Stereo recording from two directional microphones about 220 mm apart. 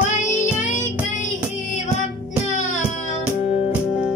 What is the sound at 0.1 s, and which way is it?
Child singing, 35° left (ahead or behind).